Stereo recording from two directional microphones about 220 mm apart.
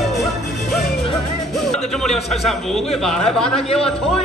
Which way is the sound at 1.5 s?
Centre (ahead or behind).